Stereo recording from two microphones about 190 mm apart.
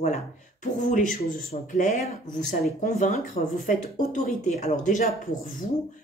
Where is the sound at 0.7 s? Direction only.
45° left (ahead or behind).